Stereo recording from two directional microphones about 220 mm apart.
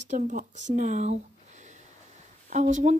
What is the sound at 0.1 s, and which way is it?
Speech, 35° right (ahead or behind).